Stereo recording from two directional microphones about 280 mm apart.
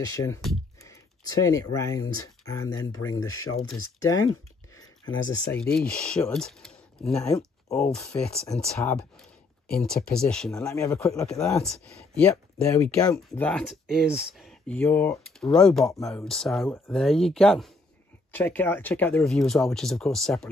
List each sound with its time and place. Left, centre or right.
0.0 s speech: centre
1.4 s speech: centre
2.1 s speech: left
2.5 s speech: centre
4.7 s a sound: centre
5.5 s speech: centre
10.1 s speech: centre